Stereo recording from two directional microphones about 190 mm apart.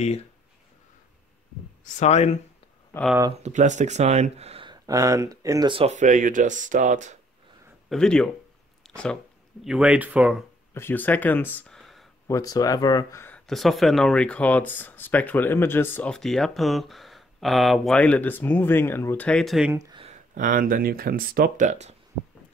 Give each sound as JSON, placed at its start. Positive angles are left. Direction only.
{"t": 0.0, "sound": "speech", "side_deg": 35}
{"t": 2.0, "sound": "speech", "side_deg": 35}
{"t": 3.4, "sound": "speech", "side_deg": -40}
{"t": 7.9, "sound": "speech", "side_deg": 5}
{"t": 10.7, "sound": "speech", "side_deg": 10}
{"t": 12.3, "sound": "speech", "side_deg": 20}
{"t": 13.5, "sound": "speech", "side_deg": 0}
{"t": 19.7, "sound": "a sound", "side_deg": -20}
{"t": 20.1, "sound": "speech", "side_deg": -45}